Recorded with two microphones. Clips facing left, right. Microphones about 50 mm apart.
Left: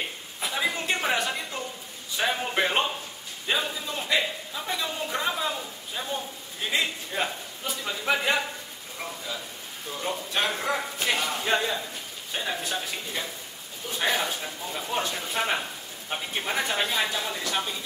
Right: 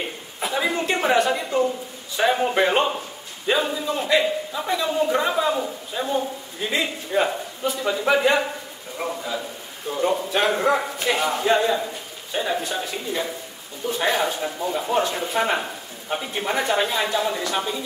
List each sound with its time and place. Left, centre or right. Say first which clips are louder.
0.4 s a man's voice: right 5 dB; centre
7.6 s a man's voice: right 7 dB; centre